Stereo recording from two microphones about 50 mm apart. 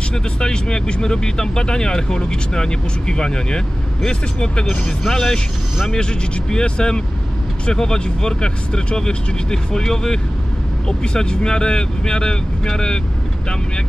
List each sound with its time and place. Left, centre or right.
0.1 s speech: centre